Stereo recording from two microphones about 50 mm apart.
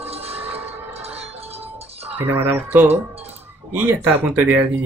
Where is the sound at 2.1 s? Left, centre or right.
Right.